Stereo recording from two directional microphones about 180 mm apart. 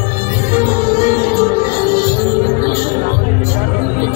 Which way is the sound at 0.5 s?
50° left (ahead or behind).